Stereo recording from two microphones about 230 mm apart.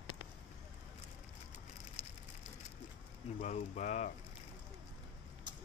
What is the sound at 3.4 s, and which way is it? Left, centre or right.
Speech, left.